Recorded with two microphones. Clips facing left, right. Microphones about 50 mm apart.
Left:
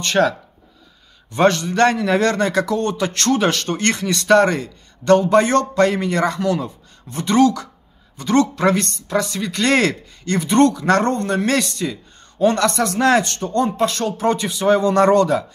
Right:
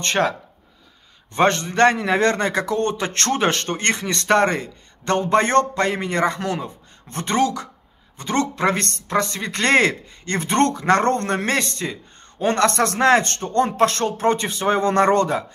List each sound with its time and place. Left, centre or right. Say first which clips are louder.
0.0 s a man's voice: left 3 dB; right
7.1 s a man's voice: left 4 dB; right
7.3 s a man's voice: left 5 dB; right
8.7 s a man's voice: left 4 dB; right
9.0 s a man's voice: left 1 dB; right
11.4 s speech: left 3 dB; right
12.7 s a man's voice: even; right
13.2 s speech: even; right
13.7 s a man's voice: right 1 dB; right
14.0 s speech: even; right